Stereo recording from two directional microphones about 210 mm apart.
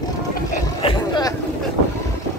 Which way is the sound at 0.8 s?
20° left (ahead or behind).